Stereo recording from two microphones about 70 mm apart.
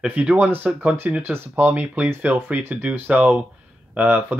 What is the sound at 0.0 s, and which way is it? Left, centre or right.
Speech, centre.